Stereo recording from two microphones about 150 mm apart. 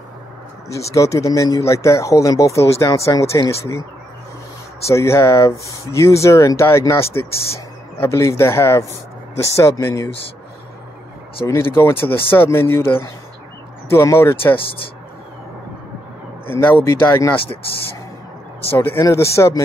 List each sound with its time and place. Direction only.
0.9 s speech: 20° left (ahead or behind)
4.8 s speech: 20° left (ahead or behind)
11.4 s speech: 15° left (ahead or behind)
16.4 s speech: 15° left (ahead or behind)
18.7 s speech: 15° left (ahead or behind)